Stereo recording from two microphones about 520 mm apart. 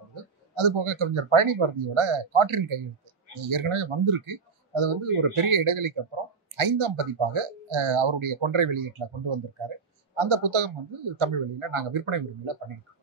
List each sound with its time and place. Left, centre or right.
0.6 s speech: right